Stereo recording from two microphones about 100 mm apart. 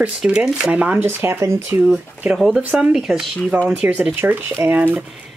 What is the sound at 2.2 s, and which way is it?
Speech, 5° right (ahead or behind).